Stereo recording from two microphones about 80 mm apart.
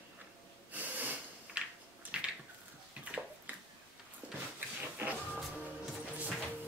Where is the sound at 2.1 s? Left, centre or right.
Centre.